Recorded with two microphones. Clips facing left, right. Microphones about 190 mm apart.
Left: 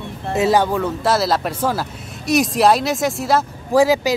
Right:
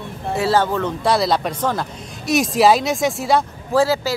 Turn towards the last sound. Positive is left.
turn(degrees=15)  # may be behind; listen again after turning